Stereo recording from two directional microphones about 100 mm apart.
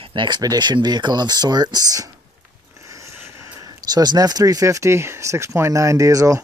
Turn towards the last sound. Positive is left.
turn(degrees=-35)  # may be behind; listen again after turning